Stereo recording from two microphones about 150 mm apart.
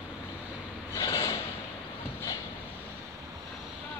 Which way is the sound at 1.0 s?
25° left (ahead or behind).